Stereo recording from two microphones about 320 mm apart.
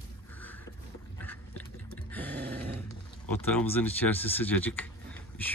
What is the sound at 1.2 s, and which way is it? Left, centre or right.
Dog, centre.